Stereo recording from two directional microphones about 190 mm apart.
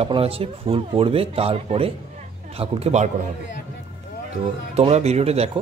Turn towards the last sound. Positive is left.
turn(degrees=-35)  # may be behind; listen again after turning